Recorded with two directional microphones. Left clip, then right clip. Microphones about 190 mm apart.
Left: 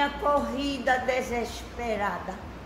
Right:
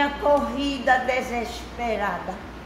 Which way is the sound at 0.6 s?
20° left (ahead or behind).